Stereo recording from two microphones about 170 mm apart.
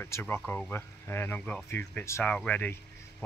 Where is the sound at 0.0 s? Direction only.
15° left (ahead or behind).